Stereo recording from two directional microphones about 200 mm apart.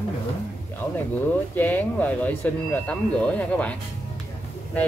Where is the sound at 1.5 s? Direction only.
10° left (ahead or behind).